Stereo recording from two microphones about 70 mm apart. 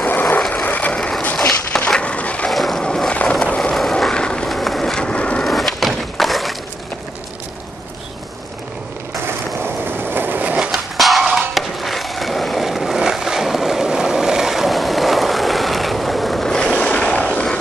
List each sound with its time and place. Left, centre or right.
0.0 s vehicle: left
1.9 s a sound: centre
2.5 s skateboard: centre
4.0 s vehicle: centre
4.5 s vehicle: centre
5.4 s wood: centre
9.2 s skateboard: right
10.7 s skateboard: centre